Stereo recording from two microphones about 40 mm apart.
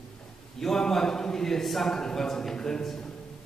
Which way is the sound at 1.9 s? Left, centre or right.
Centre.